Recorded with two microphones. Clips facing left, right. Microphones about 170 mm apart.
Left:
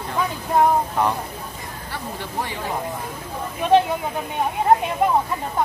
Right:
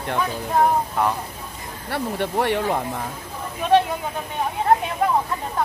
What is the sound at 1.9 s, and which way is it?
Speech, 65° right (ahead or behind).